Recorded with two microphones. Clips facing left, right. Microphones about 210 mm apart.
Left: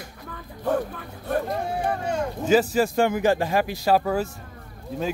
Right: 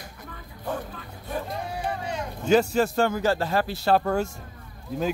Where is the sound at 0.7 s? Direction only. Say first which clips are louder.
Left 7 dB; 60° left (ahead or behind).